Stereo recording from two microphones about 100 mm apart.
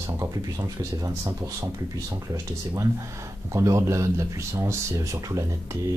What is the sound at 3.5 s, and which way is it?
Speech, 30° right (ahead or behind).